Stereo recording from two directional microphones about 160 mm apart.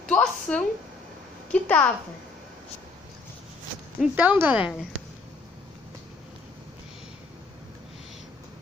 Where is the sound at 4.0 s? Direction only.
10° right (ahead or behind).